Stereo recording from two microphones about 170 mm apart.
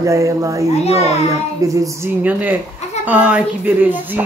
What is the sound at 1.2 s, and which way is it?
A woman's voice, 20° right (ahead or behind).